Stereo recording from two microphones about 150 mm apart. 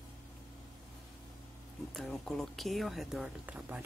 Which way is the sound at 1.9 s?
Centre (ahead or behind).